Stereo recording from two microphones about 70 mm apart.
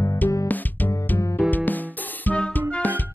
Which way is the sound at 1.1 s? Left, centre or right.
Left.